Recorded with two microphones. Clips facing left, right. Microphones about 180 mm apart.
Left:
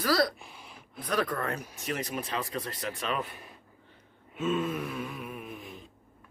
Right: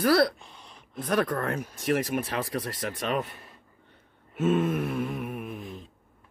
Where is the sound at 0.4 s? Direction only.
5° left (ahead or behind).